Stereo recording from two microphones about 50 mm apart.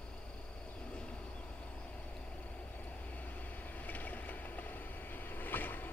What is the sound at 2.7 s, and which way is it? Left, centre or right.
Vehicle, left.